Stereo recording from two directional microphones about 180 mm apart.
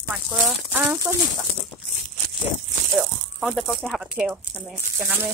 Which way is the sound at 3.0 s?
Centre (ahead or behind).